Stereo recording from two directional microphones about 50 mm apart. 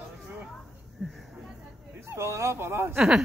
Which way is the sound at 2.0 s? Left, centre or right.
Right.